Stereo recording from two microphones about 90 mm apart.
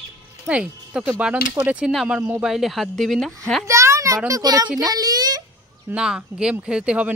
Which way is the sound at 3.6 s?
35° right (ahead or behind).